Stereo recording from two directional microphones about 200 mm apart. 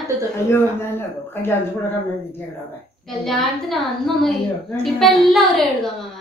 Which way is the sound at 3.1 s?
Centre (ahead or behind).